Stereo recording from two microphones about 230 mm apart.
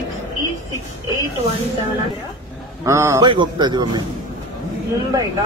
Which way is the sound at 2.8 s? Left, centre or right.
Centre.